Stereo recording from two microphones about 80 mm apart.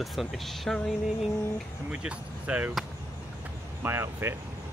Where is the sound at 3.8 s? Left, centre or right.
Right.